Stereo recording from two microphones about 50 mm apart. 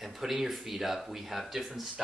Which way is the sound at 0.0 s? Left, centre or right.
Centre.